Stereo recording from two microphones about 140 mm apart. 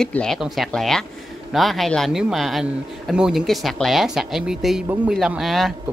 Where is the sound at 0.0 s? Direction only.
5° left (ahead or behind).